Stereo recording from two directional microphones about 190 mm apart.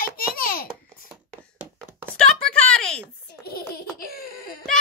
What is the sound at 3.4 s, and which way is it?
Laughter, 55° left (ahead or behind).